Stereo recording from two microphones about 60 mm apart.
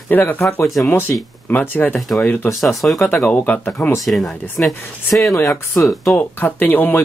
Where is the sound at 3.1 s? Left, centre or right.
Left.